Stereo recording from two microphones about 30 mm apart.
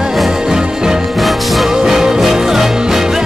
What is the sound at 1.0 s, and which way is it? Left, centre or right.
Music, centre.